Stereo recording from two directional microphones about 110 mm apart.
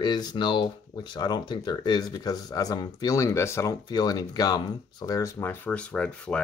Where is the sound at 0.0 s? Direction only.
40° left (ahead or behind).